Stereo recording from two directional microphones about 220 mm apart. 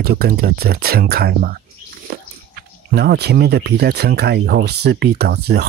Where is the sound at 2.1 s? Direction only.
45° right (ahead or behind).